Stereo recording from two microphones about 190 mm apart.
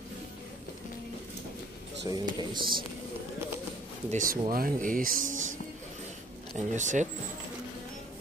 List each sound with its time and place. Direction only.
2.0 s speech: 25° right (ahead or behind)
4.1 s speech: 45° right (ahead or behind)